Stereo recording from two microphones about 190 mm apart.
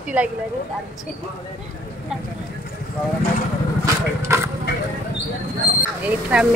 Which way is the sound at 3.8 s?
15° right (ahead or behind).